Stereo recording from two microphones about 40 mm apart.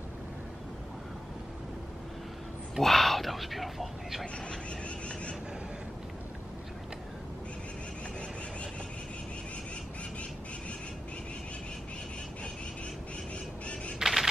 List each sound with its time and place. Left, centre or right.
2.8 s a sound: centre
4.8 s vehicle: left
14.0 s single-lens reflex camera: centre